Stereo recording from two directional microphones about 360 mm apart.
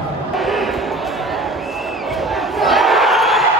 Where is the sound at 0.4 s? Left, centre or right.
Centre.